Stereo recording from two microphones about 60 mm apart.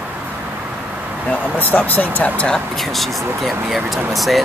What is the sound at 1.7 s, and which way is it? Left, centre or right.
Speech, left.